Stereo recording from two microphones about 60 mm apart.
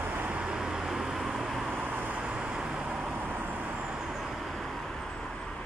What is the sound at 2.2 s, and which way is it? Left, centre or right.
Vehicle, centre.